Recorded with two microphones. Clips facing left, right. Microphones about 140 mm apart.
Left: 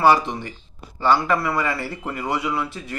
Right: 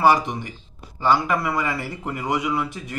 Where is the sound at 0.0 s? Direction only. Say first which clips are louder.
Left 1 dB; 15° right (ahead or behind).